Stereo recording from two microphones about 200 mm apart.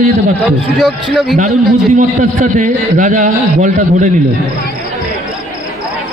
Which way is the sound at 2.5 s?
40° right (ahead or behind).